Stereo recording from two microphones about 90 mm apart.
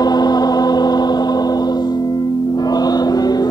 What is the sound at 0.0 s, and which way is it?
Gong, 50° left (ahead or behind).